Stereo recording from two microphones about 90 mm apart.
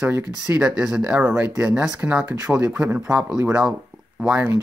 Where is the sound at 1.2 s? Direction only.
20° right (ahead or behind).